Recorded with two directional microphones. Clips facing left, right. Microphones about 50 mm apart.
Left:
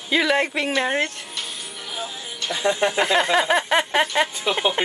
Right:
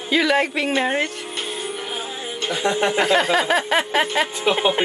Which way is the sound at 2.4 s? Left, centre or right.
Right.